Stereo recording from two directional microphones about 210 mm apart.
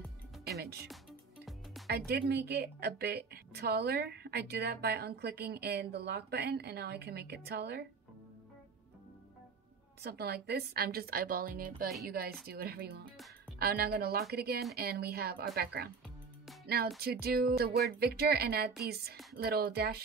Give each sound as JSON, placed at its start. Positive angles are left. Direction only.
{"t": 0.5, "sound": "music", "side_deg": -50}
{"t": 1.9, "sound": "a woman's voice", "side_deg": -50}
{"t": 10.0, "sound": "a woman's voice", "side_deg": -50}
{"t": 16.6, "sound": "music", "side_deg": -50}
{"t": 17.0, "sound": "a woman's voice", "side_deg": -45}